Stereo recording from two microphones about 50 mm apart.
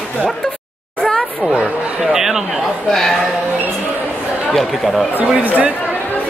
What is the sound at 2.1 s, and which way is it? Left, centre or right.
Speech, centre.